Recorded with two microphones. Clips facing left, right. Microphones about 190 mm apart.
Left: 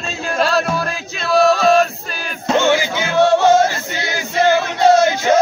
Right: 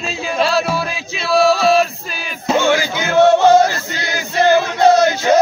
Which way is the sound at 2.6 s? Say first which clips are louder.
Even; 20° left (ahead or behind).